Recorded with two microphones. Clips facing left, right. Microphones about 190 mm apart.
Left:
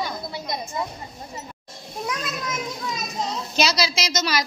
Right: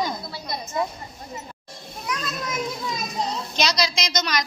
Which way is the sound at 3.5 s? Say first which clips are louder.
Left 2 dB; 5° left (ahead or behind).